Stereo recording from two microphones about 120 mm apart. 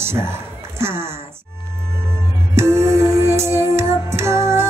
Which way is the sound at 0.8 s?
20° right (ahead or behind).